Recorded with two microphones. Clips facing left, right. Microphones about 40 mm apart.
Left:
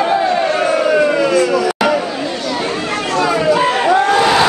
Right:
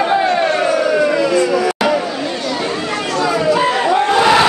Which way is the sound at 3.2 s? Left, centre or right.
Centre.